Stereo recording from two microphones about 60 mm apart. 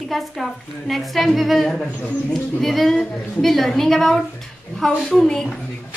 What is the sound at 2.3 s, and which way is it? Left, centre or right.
A woman's voice, centre.